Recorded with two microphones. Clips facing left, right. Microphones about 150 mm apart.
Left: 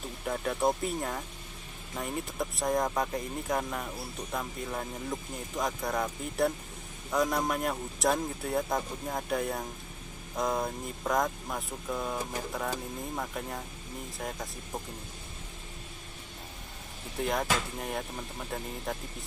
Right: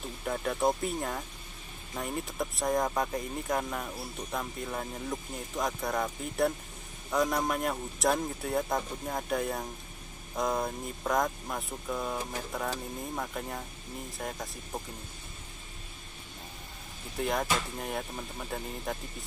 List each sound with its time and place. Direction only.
0.2 s speech: centre (ahead or behind)
17.2 s speech: centre (ahead or behind)